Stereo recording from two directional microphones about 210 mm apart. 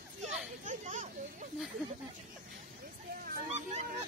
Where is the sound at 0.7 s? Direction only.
35° right (ahead or behind).